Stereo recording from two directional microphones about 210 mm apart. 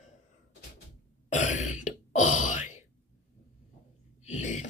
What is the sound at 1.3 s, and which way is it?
Throat clearing, 35° left (ahead or behind).